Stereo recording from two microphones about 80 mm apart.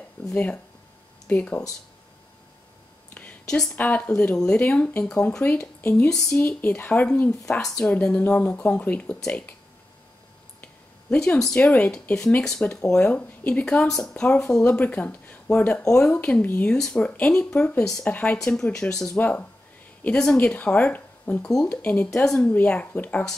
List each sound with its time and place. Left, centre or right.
0.3 s speech: centre
3.2 s a sound: centre
3.7 s speech: centre
6.0 s speech: centre
6.4 s speech: left
10.6 s a sound: centre
11.6 s speech: centre
13.1 s speech: left
16.7 s speech: centre
19.1 s speech: centre